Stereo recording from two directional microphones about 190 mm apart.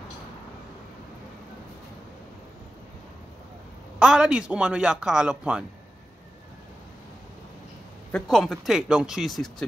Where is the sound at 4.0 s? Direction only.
5° right (ahead or behind).